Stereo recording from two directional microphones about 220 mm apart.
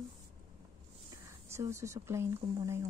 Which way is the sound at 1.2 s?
15° right (ahead or behind).